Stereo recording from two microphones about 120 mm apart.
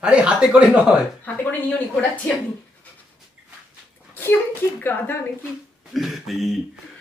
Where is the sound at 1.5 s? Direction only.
15° left (ahead or behind).